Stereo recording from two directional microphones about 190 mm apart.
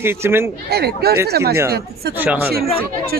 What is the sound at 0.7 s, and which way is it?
Speech, 55° right (ahead or behind).